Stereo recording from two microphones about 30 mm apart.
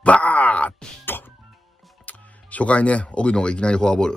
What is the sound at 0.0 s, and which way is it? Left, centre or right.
Groan, left.